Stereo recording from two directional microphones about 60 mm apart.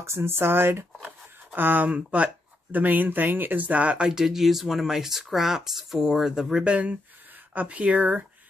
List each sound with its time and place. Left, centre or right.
0.0 s speech: right; by 6.6 s centre
6.6 s speech: right